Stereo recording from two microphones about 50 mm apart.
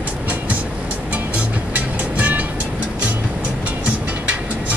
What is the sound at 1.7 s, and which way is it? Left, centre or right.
Music, right.